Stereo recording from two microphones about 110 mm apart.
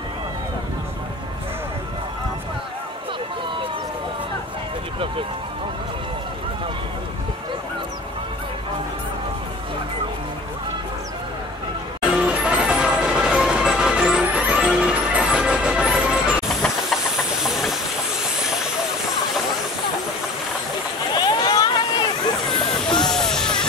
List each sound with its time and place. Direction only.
12.2 s music: 10° right (ahead or behind)
18.4 s hiss: 5° right (ahead or behind)
21.2 s a sound: 40° left (ahead or behind)
23.0 s music: 5° left (ahead or behind)